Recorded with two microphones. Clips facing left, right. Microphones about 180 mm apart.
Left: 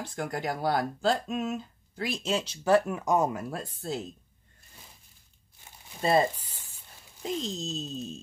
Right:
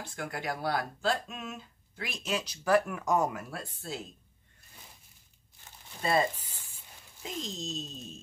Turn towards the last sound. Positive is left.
turn(degrees=35)  # may be behind; listen again after turning